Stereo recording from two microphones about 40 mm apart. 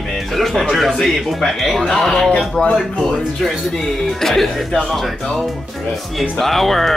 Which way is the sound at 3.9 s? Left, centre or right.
Centre.